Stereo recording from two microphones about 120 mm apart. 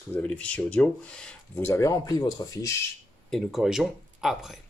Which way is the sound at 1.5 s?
20° left (ahead or behind).